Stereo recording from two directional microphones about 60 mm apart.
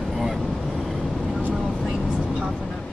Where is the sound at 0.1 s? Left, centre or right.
Centre.